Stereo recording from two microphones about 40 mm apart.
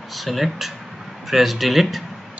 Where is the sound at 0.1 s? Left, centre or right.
Centre.